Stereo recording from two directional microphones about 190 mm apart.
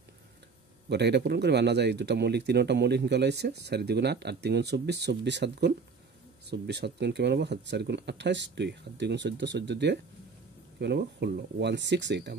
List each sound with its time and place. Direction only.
0.8 s speech: 60° right (ahead or behind)